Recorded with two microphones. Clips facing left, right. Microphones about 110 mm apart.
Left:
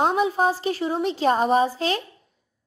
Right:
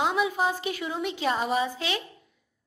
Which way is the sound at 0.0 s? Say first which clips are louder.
Left 5 dB; 35° left (ahead or behind).